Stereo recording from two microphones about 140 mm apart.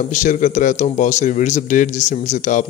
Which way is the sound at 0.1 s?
65° left (ahead or behind).